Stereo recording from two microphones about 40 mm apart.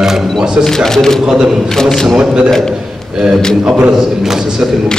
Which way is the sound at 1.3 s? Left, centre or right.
Centre.